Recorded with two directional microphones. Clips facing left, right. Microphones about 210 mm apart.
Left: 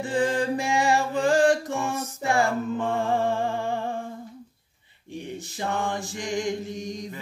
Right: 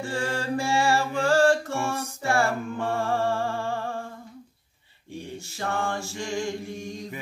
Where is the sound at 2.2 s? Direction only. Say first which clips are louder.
Left 1 dB; 20° left (ahead or behind).